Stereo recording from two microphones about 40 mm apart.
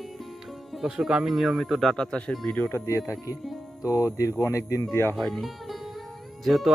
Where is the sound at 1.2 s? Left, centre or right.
Centre.